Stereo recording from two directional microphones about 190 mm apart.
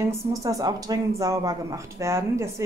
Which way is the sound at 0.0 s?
20° right (ahead or behind).